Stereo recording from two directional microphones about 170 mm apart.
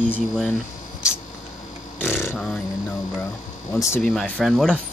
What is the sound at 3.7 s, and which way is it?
Speech, 15° left (ahead or behind).